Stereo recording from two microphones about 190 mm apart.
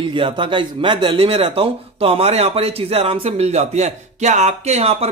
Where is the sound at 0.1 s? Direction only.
25° right (ahead or behind).